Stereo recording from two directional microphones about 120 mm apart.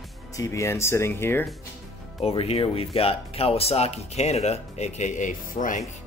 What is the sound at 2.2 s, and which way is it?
Speech, 55° left (ahead or behind).